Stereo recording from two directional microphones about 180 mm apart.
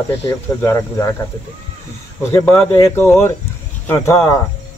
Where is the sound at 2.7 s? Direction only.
15° left (ahead or behind).